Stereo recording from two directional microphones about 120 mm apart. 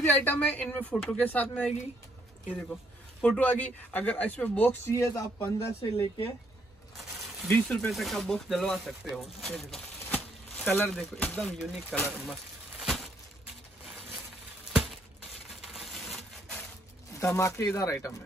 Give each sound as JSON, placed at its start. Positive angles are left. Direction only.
{"t": 0.0, "sound": "speech", "side_deg": 15}
{"t": 4.9, "sound": "music", "side_deg": 25}
{"t": 5.8, "sound": "speech", "side_deg": 50}
{"t": 7.6, "sound": "speech", "side_deg": 5}
{"t": 10.0, "sound": "a sound", "side_deg": 15}
{"t": 11.0, "sound": "speech", "side_deg": 10}
{"t": 11.5, "sound": "speech", "side_deg": 0}
{"t": 12.3, "sound": "a sound", "side_deg": 0}
{"t": 15.6, "sound": "a sound", "side_deg": 0}
{"t": 17.1, "sound": "speech", "side_deg": 25}
{"t": 17.7, "sound": "music", "side_deg": 25}